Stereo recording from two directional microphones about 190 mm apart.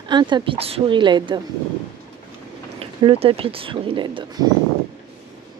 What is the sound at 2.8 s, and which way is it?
Speech, 30° right (ahead or behind).